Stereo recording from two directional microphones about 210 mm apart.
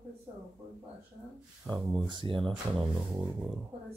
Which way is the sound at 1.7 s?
20° right (ahead or behind).